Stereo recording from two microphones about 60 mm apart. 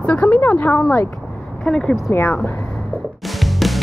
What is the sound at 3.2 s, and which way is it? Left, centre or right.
Music, centre.